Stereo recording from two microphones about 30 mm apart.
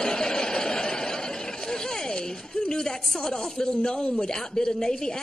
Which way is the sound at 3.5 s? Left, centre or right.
Left.